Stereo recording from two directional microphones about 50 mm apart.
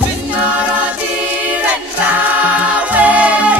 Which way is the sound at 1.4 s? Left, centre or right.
Right.